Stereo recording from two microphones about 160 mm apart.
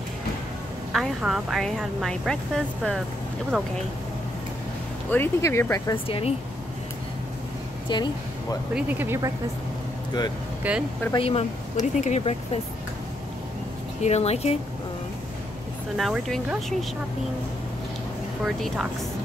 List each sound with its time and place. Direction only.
0.9 s speech: centre (ahead or behind)
5.1 s speech: 15° left (ahead or behind)
6.0 s speech: 35° left (ahead or behind)
7.9 s speech: 25° left (ahead or behind)
8.7 s speech: 10° right (ahead or behind)
10.6 s speech: 10° right (ahead or behind)
11.1 s speech: 40° left (ahead or behind)
14.0 s speech: 40° left (ahead or behind)
16.0 s speech: 5° right (ahead or behind)
18.4 s speech: 5° right (ahead or behind)